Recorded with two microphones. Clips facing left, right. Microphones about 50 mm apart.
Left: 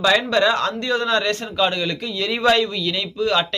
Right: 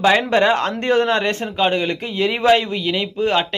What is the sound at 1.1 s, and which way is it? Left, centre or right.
A man's voice, right.